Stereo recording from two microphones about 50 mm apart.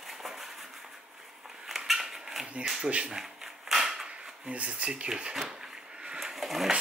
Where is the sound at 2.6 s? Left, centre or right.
Centre.